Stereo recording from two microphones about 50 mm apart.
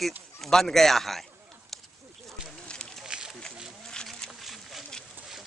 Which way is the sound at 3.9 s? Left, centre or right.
Centre.